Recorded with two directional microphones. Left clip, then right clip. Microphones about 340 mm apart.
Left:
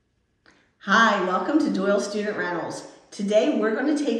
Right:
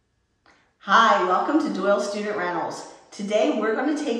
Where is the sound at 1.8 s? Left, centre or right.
Centre.